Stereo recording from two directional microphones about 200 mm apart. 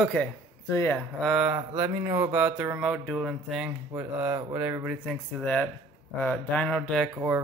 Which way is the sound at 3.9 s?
10° right (ahead or behind).